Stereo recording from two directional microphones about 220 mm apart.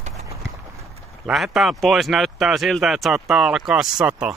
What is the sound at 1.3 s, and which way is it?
Speech, centre (ahead or behind).